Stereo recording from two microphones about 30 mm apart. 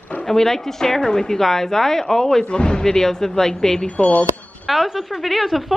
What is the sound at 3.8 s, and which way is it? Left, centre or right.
Speech, left.